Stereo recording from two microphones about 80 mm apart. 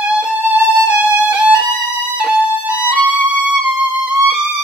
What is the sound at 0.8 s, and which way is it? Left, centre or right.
Violin, centre.